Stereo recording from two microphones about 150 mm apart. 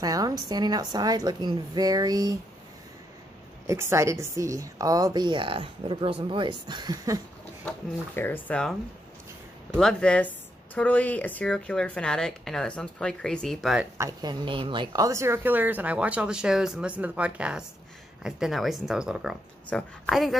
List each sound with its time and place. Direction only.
0.0 s a woman's voice: 25° right (ahead or behind)
3.6 s a woman's voice: 20° right (ahead or behind)
8.2 s speech: 10° left (ahead or behind)
9.8 s a woman's voice: 5° left (ahead or behind)
13.9 s a woman's voice: 25° right (ahead or behind); by 20.3 s centre (ahead or behind)